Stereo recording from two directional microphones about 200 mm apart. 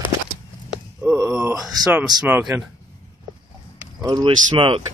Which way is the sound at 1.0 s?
10° right (ahead or behind).